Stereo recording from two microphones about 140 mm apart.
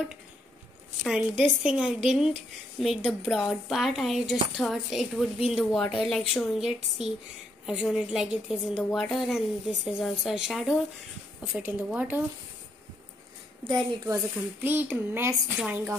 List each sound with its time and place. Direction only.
1.0 s a woman's voice: 5° right (ahead or behind)
13.7 s speech: 20° right (ahead or behind)